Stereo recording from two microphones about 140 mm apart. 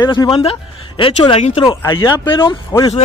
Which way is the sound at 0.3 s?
45° left (ahead or behind).